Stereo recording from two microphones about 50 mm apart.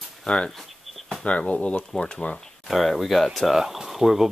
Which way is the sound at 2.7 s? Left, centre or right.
Centre.